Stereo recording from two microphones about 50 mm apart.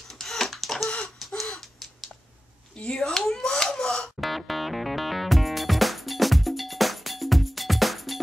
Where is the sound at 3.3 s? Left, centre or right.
Centre.